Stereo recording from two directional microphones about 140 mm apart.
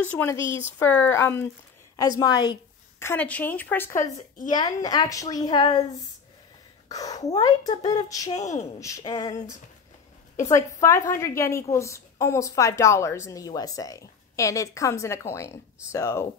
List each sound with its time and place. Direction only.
0.4 s speech: 35° right (ahead or behind)
0.7 s a woman's voice: 15° left (ahead or behind)
3.0 s speech: 15° left (ahead or behind)
3.9 s speech: 65° left (ahead or behind)
4.5 s a woman's voice: 30° left (ahead or behind)
6.9 s a woman's voice: 25° left (ahead or behind)
8.4 s speech: 55° left (ahead or behind)
8.7 s a woman's voice: 20° left (ahead or behind)
10.5 s a woman's voice: 20° left (ahead or behind)